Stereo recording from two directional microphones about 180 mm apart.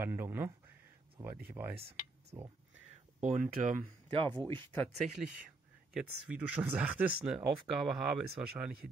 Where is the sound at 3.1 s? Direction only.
45° right (ahead or behind).